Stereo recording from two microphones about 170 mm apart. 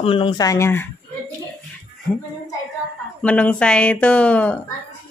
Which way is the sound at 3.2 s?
10° left (ahead or behind).